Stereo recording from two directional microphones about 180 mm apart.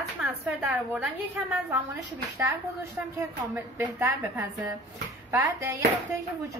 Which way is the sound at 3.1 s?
10° right (ahead or behind).